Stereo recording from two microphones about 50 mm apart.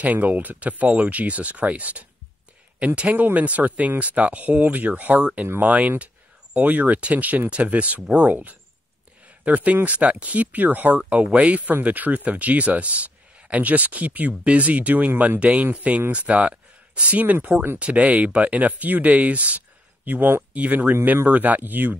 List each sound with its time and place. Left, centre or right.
0.0 s speech: right
20.1 s speech: right
20.5 s speech: right